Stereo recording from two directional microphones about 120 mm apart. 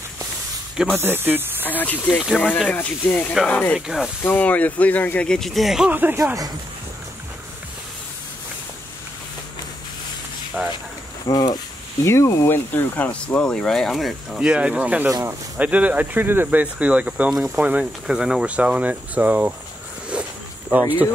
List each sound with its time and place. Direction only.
0.9 s speech: 15° right (ahead or behind)
1.6 s speech: 15° left (ahead or behind)
2.1 s speech: centre (ahead or behind)
2.7 s speech: 15° left (ahead or behind)
3.8 s speech: 5° right (ahead or behind)
4.2 s speech: 15° left (ahead or behind); by 5.9 s centre (ahead or behind)
5.9 s speech: 15° right (ahead or behind)
10.6 s speech: 5° right (ahead or behind)
11.2 s speech: 35° left (ahead or behind); by 15.0 s 10° right (ahead or behind)
15.0 s speech: 25° right (ahead or behind)
15.5 s speech: 10° right (ahead or behind)